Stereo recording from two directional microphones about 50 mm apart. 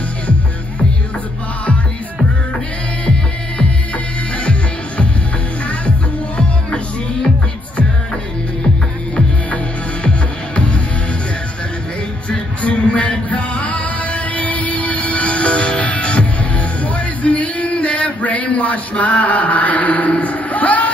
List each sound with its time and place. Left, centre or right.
4.5 s music: left
6.3 s music: left
10.0 s music: left
12.3 s music: left